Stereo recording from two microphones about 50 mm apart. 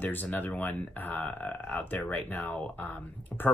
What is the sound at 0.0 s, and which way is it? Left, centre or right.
Speech, left.